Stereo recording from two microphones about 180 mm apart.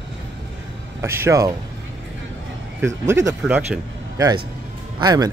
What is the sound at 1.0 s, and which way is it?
Speech, 15° right (ahead or behind).